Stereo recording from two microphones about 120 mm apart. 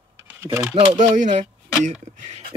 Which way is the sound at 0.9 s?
90° right.